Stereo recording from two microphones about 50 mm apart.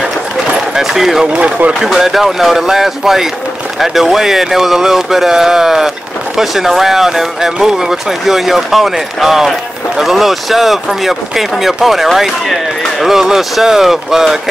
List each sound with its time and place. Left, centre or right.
0.5 s a sound: centre
1.2 s speech: centre
1.7 s speech: centre